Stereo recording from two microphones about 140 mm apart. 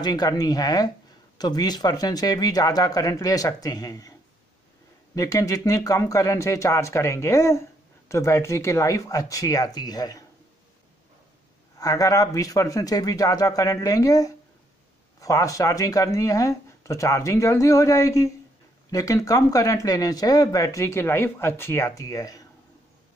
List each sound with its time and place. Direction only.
0.0 s speech: 30° left (ahead or behind)
5.1 s speech: 25° left (ahead or behind)
11.8 s speech: 25° left (ahead or behind)